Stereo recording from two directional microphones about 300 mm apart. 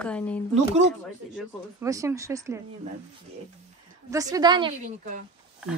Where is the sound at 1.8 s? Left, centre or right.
Centre.